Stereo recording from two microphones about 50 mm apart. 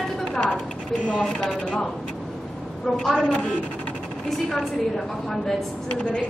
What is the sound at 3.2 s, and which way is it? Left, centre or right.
A woman's voice, centre.